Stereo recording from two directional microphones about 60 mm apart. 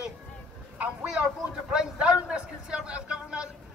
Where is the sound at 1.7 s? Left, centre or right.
Centre.